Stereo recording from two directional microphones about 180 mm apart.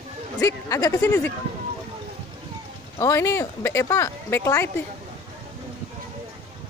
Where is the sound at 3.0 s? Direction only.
15° left (ahead or behind).